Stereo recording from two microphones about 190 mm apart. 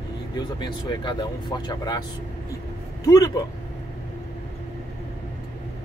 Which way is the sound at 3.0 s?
15° left (ahead or behind).